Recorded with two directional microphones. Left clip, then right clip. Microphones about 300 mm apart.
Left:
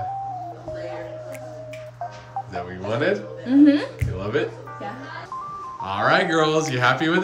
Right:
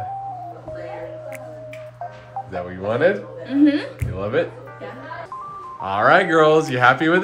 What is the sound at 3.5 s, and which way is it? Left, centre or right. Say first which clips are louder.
Speech: left 1 dB; left.